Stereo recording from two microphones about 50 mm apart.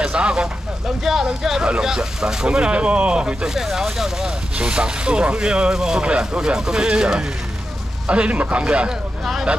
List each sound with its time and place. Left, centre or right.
0.0 s vehicle: centre
1.2 s speech: centre
4.6 s speech: right